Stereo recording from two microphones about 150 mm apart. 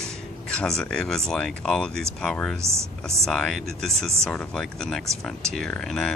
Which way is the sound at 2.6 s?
20° right (ahead or behind).